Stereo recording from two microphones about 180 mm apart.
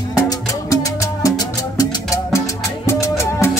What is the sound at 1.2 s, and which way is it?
Music, 20° left (ahead or behind).